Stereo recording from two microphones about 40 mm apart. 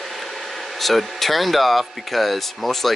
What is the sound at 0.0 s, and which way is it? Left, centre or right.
Speech, centre.